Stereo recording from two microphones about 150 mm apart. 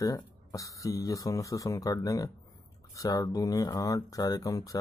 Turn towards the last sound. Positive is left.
turn(degrees=20)  # may be behind; listen again after turning